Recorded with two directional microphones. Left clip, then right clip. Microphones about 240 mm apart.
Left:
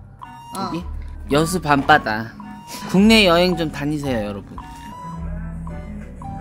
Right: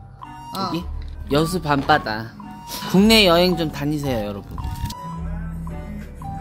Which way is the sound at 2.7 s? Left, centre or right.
Centre.